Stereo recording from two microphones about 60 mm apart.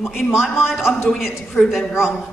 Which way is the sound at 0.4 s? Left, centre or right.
Centre.